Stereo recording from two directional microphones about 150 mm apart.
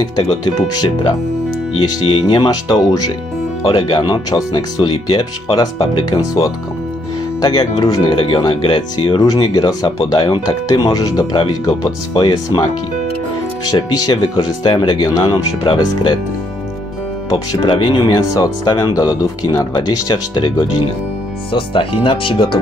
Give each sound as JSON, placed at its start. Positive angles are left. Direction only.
{"t": 0.2, "sound": "speech", "side_deg": 25}
{"t": 10.7, "sound": "speech", "side_deg": 25}
{"t": 13.7, "sound": "speech", "side_deg": 25}
{"t": 17.5, "sound": "speech", "side_deg": 30}